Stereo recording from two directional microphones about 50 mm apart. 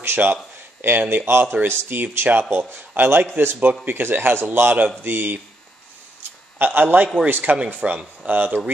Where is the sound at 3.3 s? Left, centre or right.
Right.